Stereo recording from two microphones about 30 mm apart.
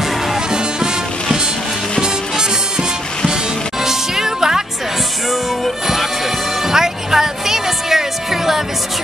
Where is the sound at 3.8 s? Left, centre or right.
Centre.